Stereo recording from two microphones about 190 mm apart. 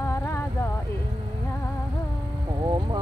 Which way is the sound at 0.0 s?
15° left (ahead or behind).